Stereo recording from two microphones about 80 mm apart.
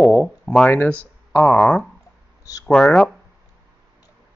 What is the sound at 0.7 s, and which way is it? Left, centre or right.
Speech, left.